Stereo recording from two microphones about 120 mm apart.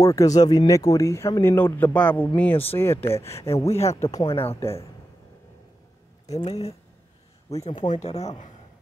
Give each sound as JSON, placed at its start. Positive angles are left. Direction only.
{"t": 0.0, "sound": "speech", "side_deg": 25}
{"t": 3.6, "sound": "speech", "side_deg": 65}
{"t": 3.9, "sound": "speech", "side_deg": 30}
{"t": 6.3, "sound": "speech", "side_deg": 60}